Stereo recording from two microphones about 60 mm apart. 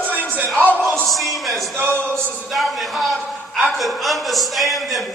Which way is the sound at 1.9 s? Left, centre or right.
Centre.